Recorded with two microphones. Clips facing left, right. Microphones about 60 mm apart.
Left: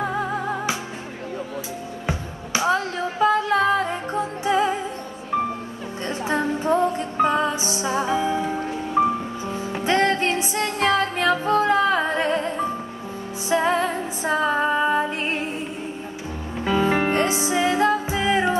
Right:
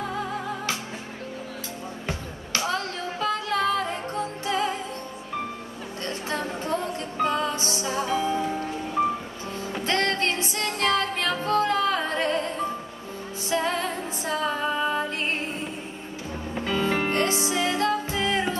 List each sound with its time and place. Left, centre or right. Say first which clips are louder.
0.0 s music: left 5 dB; left
2.0 s music: left 6 dB; centre
6.0 s music: left 7 dB; centre
14.3 s female singing: left 6 dB; left
16.6 s music: left 5 dB; centre